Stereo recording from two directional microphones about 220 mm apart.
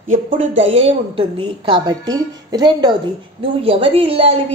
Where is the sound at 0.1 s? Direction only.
35° right (ahead or behind).